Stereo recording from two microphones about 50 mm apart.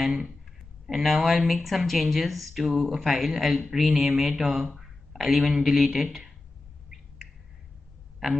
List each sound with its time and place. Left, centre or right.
0.0 s speech: centre
8.2 s speech: centre